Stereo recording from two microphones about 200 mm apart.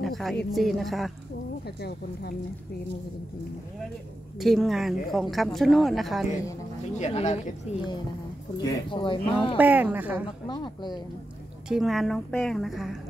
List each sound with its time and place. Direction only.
0.0 s speech: centre (ahead or behind)
1.8 s speech: 55° left (ahead or behind)
4.4 s speech: centre (ahead or behind)
7.0 s speech: 35° left (ahead or behind)
8.5 s speech: 20° left (ahead or behind)
9.6 s speech: 10° right (ahead or behind)
10.4 s speech: 20° left (ahead or behind)
11.7 s speech: centre (ahead or behind)